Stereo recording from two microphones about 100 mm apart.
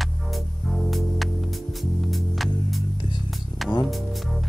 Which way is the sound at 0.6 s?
Centre (ahead or behind).